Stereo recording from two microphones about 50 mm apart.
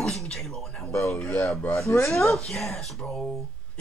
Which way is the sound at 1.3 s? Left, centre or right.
Left.